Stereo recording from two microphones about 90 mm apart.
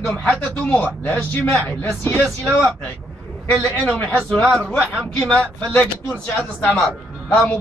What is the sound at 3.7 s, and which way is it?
Speech, 20° left (ahead or behind).